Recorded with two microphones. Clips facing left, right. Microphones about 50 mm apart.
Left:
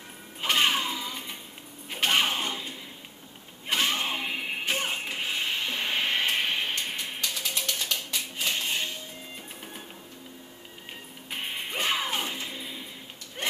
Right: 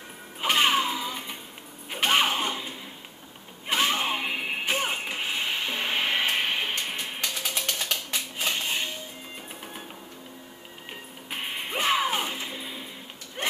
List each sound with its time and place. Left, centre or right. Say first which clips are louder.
0.4 s music: right 2 dB; centre
1.9 s a sound: right 2 dB; centre
3.6 s music: right 2 dB; centre
7.4 s a sound: right 2 dB; right
8.5 s music: right 1 dB; centre
11.2 s music: right 1 dB; centre
13.4 s dog: right 2 dB; centre